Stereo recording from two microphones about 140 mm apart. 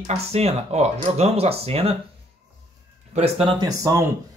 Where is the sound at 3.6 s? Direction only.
20° right (ahead or behind).